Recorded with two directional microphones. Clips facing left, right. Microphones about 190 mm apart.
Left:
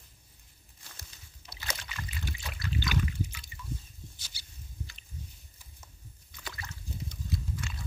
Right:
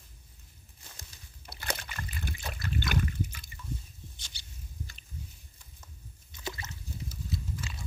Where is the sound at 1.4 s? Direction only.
55° right (ahead or behind).